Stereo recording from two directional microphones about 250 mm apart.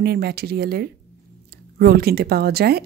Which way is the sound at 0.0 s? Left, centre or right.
Right.